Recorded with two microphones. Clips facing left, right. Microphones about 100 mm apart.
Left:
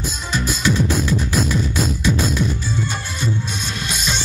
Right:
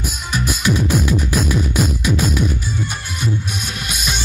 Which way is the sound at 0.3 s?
15° right (ahead or behind).